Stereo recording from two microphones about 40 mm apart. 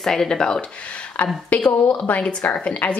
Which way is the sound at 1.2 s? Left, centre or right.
Left.